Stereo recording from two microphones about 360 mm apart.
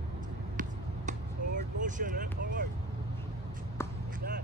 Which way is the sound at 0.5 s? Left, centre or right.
Centre.